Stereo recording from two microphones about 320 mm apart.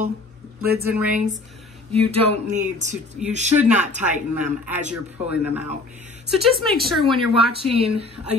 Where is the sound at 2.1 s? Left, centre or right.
Right.